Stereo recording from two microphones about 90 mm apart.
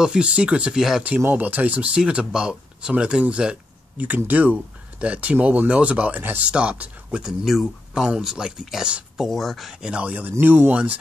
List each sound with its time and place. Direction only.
0.0 s speech: 10° right (ahead or behind)
1.2 s speech: 20° right (ahead or behind)